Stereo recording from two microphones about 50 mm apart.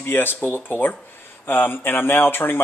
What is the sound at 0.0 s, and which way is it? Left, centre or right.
Speech, left.